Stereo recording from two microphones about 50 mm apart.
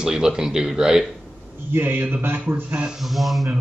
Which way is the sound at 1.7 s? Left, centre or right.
Right.